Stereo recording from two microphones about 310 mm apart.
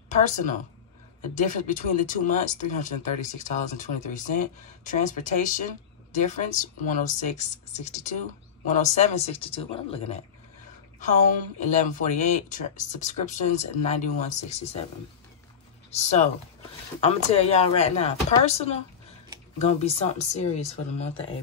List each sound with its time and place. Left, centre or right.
0.1 s speech: left
11.6 s speech: left
15.9 s speech: left